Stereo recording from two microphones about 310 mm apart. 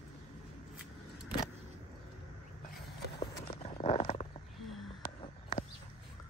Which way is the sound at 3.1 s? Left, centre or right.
Centre.